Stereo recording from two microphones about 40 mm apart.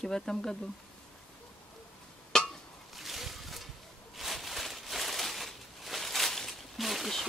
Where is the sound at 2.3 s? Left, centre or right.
Centre.